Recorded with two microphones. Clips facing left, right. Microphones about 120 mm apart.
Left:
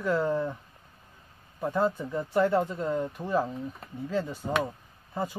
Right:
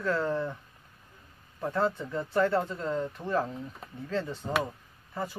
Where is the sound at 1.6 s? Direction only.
10° left (ahead or behind).